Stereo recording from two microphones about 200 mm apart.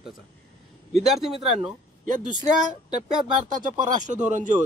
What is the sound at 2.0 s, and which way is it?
Speech, 40° right (ahead or behind).